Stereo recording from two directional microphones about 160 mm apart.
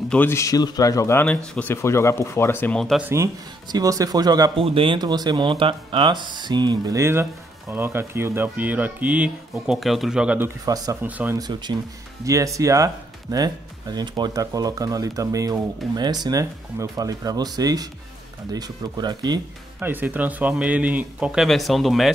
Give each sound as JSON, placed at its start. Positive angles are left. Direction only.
{"t": 0.1, "sound": "speech", "side_deg": 15}
{"t": 3.1, "sound": "speech", "side_deg": -20}
{"t": 10.6, "sound": "speech", "side_deg": -25}
{"t": 11.0, "sound": "speech", "side_deg": -10}
{"t": 11.3, "sound": "speech", "side_deg": -25}
{"t": 19.8, "sound": "speech", "side_deg": -10}